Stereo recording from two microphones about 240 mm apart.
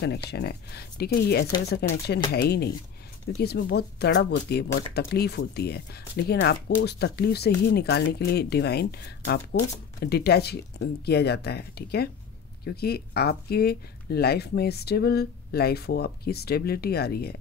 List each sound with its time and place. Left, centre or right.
0.3 s speech: left